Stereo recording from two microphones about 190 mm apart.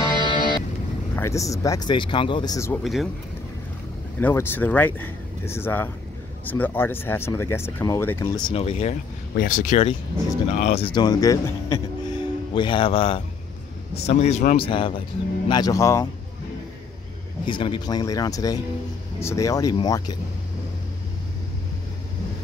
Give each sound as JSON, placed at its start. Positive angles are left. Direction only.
{"t": 0.0, "sound": "music", "side_deg": 20}
{"t": 1.1, "sound": "speech", "side_deg": 15}
{"t": 2.8, "sound": "speech", "side_deg": 0}
{"t": 4.2, "sound": "speech", "side_deg": 10}
{"t": 8.4, "sound": "speech", "side_deg": 25}
{"t": 9.4, "sound": "speech", "side_deg": 45}
{"t": 14.7, "sound": "speech", "side_deg": 25}
{"t": 17.5, "sound": "speech", "side_deg": 25}